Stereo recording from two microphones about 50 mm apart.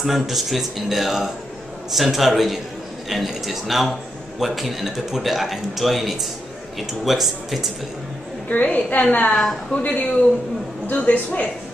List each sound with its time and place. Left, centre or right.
0.0 s a man's voice: centre
8.5 s a woman's voice: left